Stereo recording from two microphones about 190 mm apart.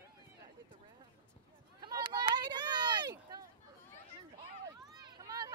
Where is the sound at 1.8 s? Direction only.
20° right (ahead or behind).